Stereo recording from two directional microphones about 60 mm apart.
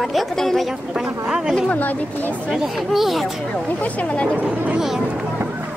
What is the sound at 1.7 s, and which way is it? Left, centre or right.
Speech, left.